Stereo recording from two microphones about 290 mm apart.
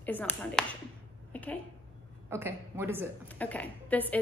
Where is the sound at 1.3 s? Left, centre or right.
Centre.